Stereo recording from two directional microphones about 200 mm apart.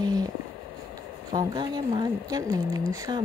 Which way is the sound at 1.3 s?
20° right (ahead or behind).